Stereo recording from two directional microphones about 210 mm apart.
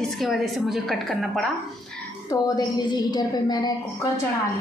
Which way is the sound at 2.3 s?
20° left (ahead or behind).